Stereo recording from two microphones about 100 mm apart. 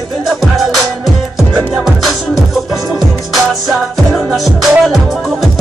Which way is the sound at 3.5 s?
Centre (ahead or behind).